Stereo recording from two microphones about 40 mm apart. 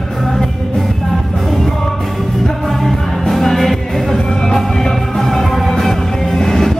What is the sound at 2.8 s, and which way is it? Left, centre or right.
Music, centre.